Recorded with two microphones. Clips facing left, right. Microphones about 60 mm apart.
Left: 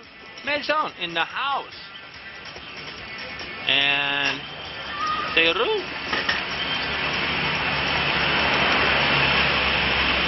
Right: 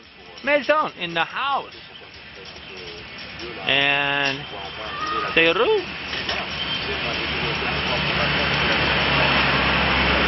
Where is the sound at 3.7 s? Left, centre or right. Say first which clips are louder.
Right 3 dB; centre.